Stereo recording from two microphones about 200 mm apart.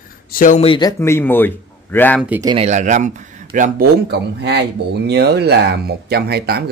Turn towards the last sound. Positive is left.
turn(degrees=-55)  # may be behind; listen again after turning